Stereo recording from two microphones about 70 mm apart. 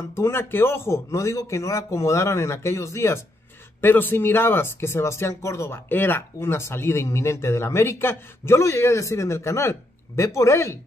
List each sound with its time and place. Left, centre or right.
0.1 s speech: left
3.8 s speech: left